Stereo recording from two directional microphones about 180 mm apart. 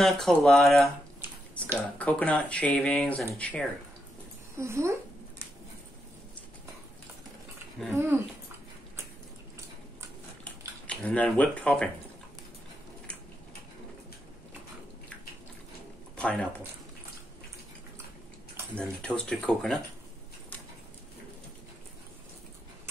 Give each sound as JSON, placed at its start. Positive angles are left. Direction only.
{"t": 0.0, "sound": "speech", "side_deg": 0}
{"t": 2.0, "sound": "speech", "side_deg": 5}
{"t": 4.6, "sound": "a woman's voice", "side_deg": -15}
{"t": 7.9, "sound": "a woman's voice", "side_deg": -15}
{"t": 10.9, "sound": "speech", "side_deg": 5}
{"t": 16.2, "sound": "speech", "side_deg": 5}
{"t": 18.8, "sound": "speech", "side_deg": 5}